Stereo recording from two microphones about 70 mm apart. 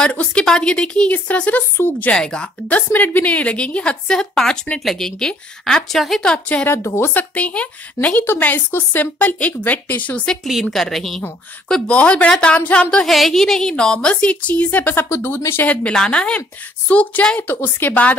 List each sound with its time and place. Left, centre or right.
0.0 s a woman's voice: centre
2.1 s a woman's voice: centre
2.9 s a woman's voice: left; by 6.2 s centre
6.2 s a woman's voice: centre
10.2 s a woman's voice: centre
11.7 s a woman's voice: centre
12.9 s a woman's voice: centre; by 15.7 s left
15.7 s a woman's voice: centre